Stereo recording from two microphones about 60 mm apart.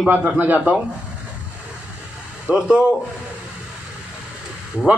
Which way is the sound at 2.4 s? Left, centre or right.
Centre.